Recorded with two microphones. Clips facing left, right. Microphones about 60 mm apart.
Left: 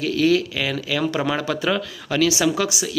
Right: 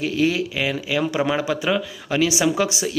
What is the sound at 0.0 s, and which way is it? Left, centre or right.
Speech, right.